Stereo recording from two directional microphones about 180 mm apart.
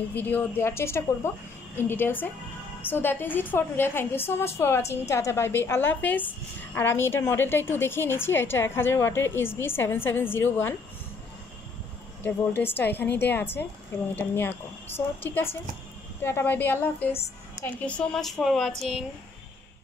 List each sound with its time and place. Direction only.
0.1 s a woman's voice: 10° left (ahead or behind)
12.2 s a woman's voice: 10° left (ahead or behind)